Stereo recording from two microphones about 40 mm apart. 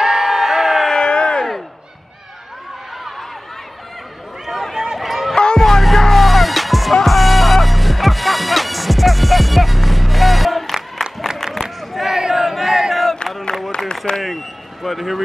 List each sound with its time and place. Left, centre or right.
0.0 s crowd: centre
0.8 s a sound: centre
4.5 s run: centre
5.3 s music: left
5.6 s music: centre
11.9 s crowd: centre
13.3 s a sound: centre